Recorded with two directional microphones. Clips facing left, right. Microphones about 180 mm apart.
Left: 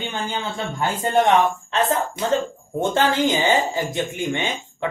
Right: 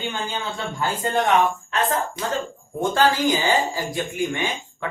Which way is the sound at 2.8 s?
25° left (ahead or behind).